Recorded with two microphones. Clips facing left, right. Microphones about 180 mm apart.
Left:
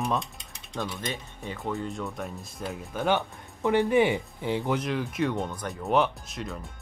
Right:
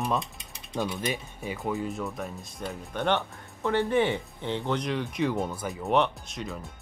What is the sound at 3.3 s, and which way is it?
Speech, 15° left (ahead or behind).